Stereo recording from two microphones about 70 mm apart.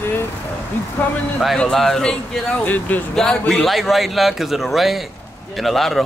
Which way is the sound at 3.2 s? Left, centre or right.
Centre.